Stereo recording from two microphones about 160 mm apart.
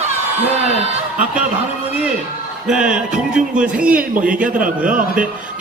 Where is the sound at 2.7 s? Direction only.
5° right (ahead or behind).